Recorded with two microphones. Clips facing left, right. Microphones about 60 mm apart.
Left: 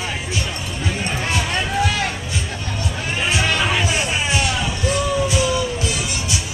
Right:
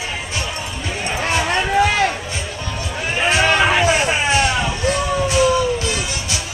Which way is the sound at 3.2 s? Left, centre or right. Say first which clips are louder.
Right 5 dB; right.